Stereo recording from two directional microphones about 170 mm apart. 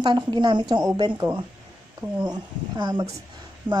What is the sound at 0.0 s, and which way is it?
A woman's voice, 25° right (ahead or behind).